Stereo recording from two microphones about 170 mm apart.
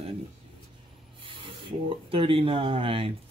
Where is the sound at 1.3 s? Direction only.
30° right (ahead or behind).